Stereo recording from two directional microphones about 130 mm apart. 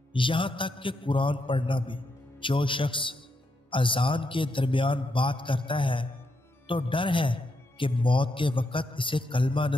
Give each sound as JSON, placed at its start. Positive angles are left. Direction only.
{"t": 0.1, "sound": "a man's voice", "side_deg": 40}